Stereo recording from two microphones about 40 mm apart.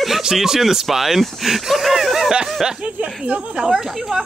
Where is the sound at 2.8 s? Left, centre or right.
Right.